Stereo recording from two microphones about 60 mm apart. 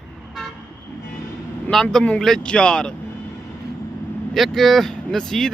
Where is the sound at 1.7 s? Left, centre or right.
Centre.